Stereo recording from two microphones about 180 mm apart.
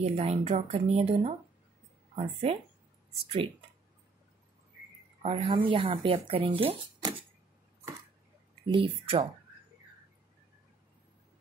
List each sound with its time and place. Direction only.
0.0 s speech: 35° right (ahead or behind)
5.2 s speech: 30° right (ahead or behind)
8.7 s speech: 30° right (ahead or behind)